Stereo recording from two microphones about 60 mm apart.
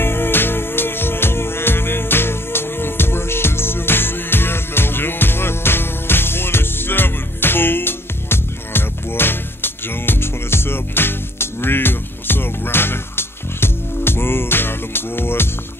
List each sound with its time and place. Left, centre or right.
0.0 s music: left